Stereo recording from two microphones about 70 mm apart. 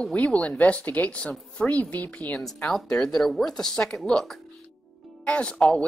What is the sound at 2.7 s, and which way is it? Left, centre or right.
Speech, centre.